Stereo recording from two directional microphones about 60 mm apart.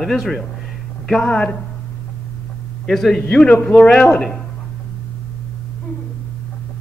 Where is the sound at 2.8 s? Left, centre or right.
Centre.